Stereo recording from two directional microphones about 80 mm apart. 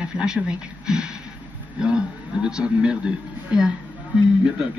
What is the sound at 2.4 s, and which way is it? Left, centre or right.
Speech, centre.